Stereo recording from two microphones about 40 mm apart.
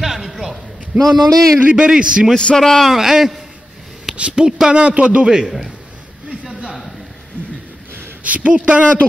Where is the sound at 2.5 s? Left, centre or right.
Centre.